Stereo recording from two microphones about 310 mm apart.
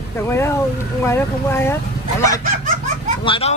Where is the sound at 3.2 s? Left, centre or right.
Centre.